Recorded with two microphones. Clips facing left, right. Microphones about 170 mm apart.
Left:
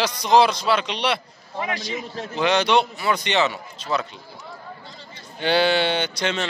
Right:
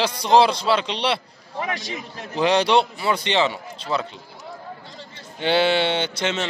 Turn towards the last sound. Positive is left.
turn(degrees=-20)  # may be behind; listen again after turning